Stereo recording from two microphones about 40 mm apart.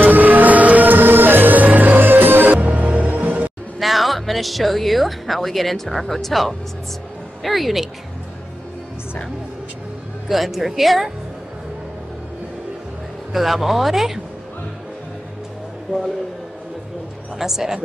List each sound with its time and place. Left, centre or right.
0.0 s music: right
3.8 s speech: centre
10.2 s speech: centre
13.3 s speech: centre
17.4 s speech: centre